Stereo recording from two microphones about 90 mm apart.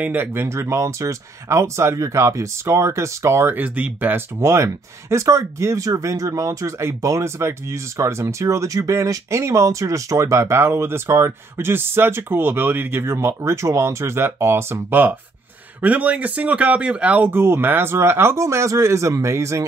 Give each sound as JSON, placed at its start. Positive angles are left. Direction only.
{"t": 0.0, "sound": "speech", "side_deg": -20}